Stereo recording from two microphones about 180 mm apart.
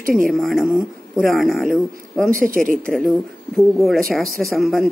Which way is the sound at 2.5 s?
50° right (ahead or behind).